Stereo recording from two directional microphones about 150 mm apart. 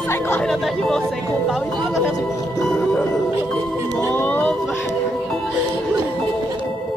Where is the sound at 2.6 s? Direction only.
10° left (ahead or behind).